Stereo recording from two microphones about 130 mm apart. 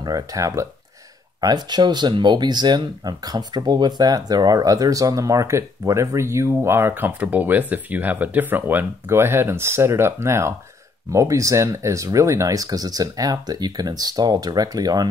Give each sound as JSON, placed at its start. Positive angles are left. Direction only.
{"t": 0.0, "sound": "speech", "side_deg": -30}